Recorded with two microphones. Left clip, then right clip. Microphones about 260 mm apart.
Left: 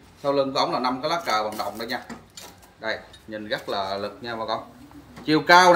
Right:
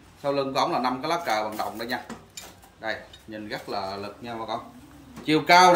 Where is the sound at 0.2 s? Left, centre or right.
Centre.